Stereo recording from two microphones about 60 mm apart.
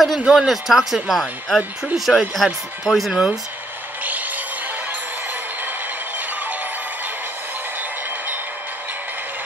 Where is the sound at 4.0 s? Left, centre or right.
Right.